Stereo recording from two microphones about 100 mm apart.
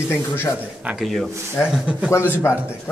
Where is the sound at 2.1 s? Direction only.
20° left (ahead or behind).